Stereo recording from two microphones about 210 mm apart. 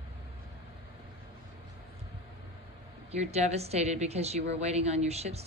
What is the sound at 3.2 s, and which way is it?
A woman's voice, 30° right (ahead or behind).